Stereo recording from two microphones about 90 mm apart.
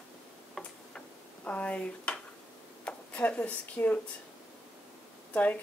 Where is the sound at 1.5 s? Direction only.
15° left (ahead or behind).